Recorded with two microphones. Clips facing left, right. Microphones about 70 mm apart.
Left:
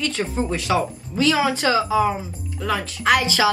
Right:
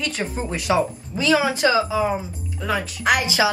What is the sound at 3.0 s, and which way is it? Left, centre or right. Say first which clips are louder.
Speech: left 1 dB; centre.